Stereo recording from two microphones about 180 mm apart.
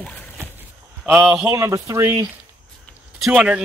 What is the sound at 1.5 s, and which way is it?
Speech, 15° right (ahead or behind).